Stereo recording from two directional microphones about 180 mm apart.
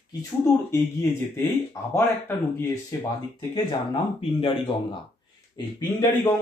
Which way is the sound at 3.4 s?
25° left (ahead or behind).